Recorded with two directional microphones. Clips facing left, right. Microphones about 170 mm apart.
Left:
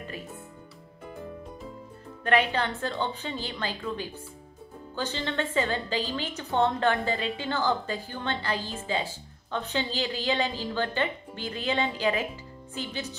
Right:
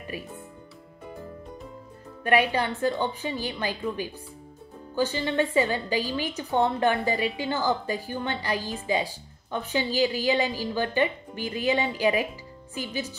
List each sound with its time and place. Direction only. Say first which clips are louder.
0.1 s a woman's voice: right 6 dB; 10° right (ahead or behind)
2.2 s a woman's voice: right 2 dB; 10° right (ahead or behind)